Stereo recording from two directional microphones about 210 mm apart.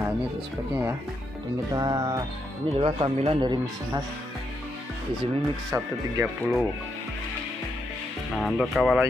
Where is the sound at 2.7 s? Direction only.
30° right (ahead or behind).